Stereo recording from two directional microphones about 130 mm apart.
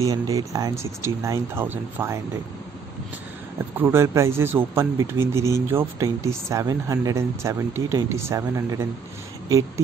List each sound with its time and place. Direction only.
0.0 s speech: 25° right (ahead or behind)
3.7 s speech: 20° right (ahead or behind)